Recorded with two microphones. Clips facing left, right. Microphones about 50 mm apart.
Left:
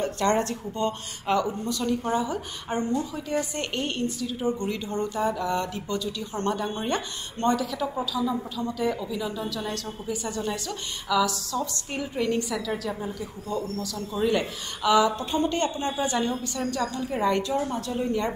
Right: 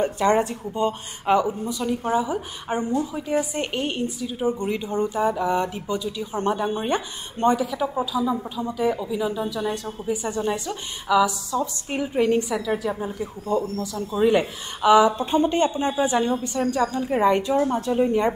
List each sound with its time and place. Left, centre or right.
0.2 s a woman's voice: centre